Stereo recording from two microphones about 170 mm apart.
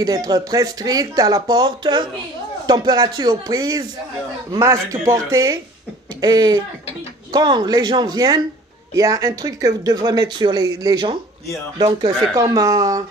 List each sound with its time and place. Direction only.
0.0 s speech: 20° right (ahead or behind)